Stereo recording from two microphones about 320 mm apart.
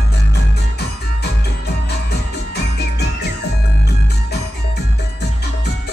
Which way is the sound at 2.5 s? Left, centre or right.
Left.